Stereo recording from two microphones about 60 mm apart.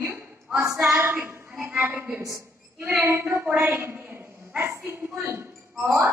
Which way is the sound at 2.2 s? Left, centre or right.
Right.